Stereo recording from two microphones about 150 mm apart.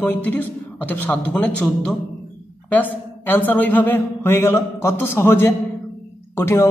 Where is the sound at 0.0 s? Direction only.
10° left (ahead or behind).